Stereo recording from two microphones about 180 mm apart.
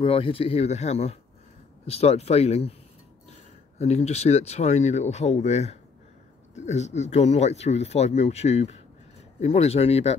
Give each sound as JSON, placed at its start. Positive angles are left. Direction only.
{"t": 0.0, "sound": "speech", "side_deg": 30}